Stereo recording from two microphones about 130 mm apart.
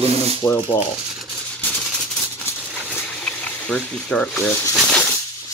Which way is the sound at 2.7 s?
5° left (ahead or behind).